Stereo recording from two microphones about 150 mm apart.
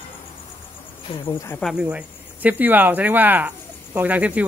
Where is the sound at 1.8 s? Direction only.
10° right (ahead or behind).